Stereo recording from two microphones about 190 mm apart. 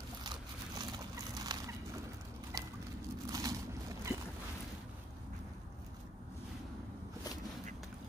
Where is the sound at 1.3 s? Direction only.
20° right (ahead or behind).